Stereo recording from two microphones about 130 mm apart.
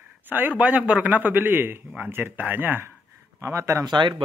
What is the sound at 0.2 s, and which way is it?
A man's voice, 15° right (ahead or behind).